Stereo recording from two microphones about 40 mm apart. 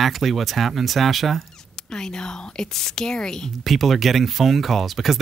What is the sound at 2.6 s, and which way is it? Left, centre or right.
Speech, centre.